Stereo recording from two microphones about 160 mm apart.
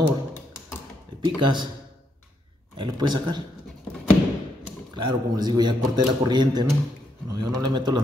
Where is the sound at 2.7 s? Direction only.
30° right (ahead or behind).